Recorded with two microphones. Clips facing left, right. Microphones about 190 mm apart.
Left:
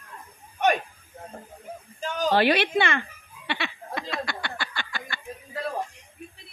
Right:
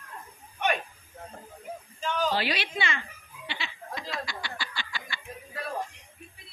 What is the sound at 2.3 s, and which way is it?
Speech, 55° left (ahead or behind).